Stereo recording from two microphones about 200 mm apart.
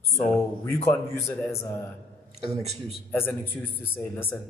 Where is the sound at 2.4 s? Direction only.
30° right (ahead or behind).